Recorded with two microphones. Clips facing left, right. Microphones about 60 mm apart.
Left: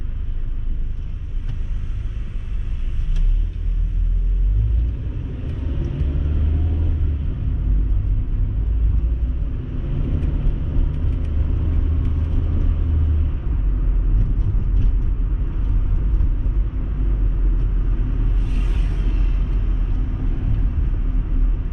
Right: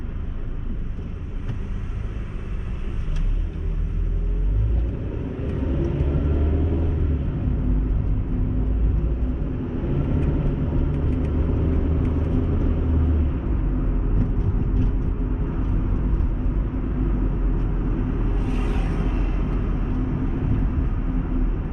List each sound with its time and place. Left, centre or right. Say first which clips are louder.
5.5 s vehicle: right 6 dB; right
9.9 s vehicle: right 2 dB; right
10.8 s vehicle: right 5 dB; centre
11.4 s vehicle: right 5 dB; right
17.7 s vehicle: right 5 dB; right